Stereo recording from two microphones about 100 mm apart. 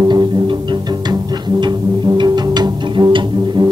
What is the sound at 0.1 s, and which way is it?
Music, 50° right (ahead or behind).